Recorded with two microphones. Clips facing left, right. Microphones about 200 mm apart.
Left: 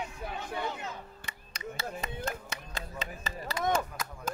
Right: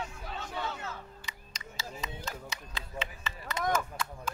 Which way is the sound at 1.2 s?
55° left (ahead or behind).